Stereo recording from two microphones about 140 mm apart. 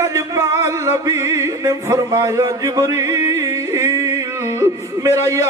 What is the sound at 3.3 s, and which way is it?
Music, 25° right (ahead or behind).